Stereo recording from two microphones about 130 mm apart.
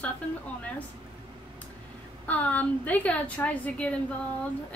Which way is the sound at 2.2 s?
10° left (ahead or behind).